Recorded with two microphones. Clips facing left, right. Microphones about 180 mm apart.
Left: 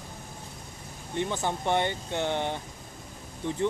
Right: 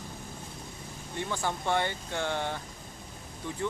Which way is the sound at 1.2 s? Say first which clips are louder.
Left 3 dB; 20° left (ahead or behind).